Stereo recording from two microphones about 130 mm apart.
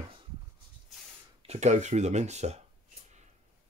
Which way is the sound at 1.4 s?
55° right (ahead or behind).